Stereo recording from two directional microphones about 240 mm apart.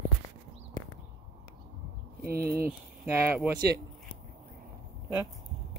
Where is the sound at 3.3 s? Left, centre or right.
Centre.